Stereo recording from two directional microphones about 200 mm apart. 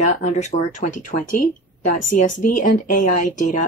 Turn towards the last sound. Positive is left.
turn(degrees=40)  # may be behind; listen again after turning